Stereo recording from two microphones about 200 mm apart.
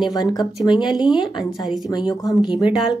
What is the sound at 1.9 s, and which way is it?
Speech, 20° left (ahead or behind).